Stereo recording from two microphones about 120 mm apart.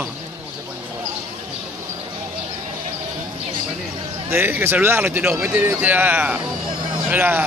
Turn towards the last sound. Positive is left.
turn(degrees=-15)  # may be behind; listen again after turning